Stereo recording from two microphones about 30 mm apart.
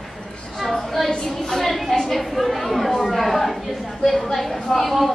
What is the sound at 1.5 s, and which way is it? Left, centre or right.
A woman's voice, centre.